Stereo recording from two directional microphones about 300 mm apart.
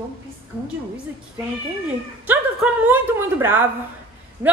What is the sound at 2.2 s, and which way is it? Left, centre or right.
A woman's voice, centre.